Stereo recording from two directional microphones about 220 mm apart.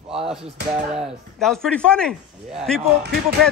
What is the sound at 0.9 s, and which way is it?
A man's voice, centre (ahead or behind).